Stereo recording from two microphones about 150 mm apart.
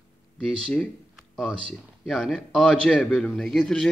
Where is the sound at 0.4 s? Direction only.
5° left (ahead or behind).